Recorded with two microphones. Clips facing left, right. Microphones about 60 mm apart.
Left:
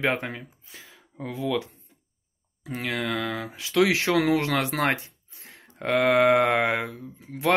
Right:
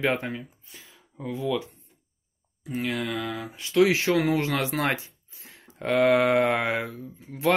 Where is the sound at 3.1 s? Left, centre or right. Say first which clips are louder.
Left 2 dB; left.